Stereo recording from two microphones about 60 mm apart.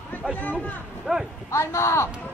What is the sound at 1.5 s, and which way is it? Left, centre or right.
Speech, left.